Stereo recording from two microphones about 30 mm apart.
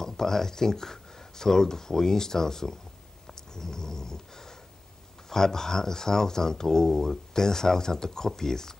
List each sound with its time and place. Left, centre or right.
0.0 s speech: centre
3.3 s dog: centre
5.3 s speech: centre